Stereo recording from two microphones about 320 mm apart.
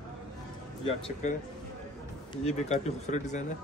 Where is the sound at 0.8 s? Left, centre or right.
Centre.